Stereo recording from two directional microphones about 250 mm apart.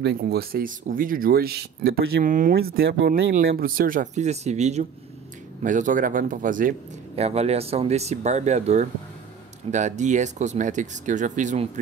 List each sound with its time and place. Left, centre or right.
0.0 s speech: right